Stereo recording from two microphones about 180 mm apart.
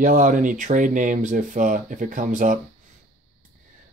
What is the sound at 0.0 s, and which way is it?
Speech, 50° right (ahead or behind).